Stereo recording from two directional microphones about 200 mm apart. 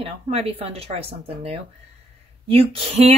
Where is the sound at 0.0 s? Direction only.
30° right (ahead or behind).